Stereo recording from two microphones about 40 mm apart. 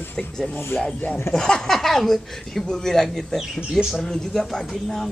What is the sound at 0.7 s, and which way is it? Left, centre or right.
Speech, left.